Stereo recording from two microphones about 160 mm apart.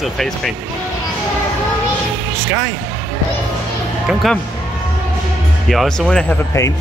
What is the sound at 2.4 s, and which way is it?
Speech, 10° right (ahead or behind).